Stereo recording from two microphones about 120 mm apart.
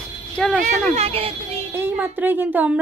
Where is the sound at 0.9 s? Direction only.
55° right (ahead or behind).